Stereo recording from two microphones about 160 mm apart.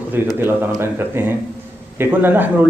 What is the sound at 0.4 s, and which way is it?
A man's voice, 15° right (ahead or behind).